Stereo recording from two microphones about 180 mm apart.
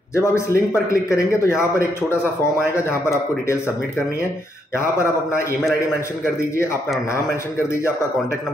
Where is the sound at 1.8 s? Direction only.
15° left (ahead or behind).